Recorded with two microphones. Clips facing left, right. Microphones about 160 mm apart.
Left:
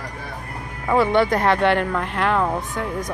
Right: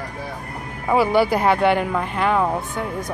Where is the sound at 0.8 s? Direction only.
5° right (ahead or behind).